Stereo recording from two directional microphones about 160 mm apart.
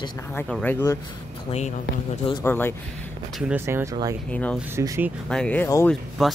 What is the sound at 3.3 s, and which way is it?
Speech, 10° right (ahead or behind).